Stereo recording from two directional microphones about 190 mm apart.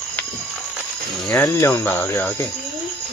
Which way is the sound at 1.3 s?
10° left (ahead or behind).